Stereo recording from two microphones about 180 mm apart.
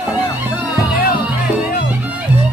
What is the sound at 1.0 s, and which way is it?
Music, 55° left (ahead or behind).